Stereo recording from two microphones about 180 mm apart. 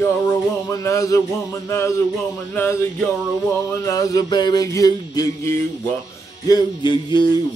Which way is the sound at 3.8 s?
20° left (ahead or behind).